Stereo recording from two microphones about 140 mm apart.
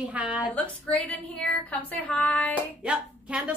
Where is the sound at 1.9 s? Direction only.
10° left (ahead or behind).